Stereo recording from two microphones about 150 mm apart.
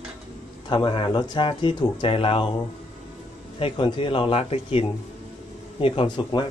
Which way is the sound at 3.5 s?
35° left (ahead or behind).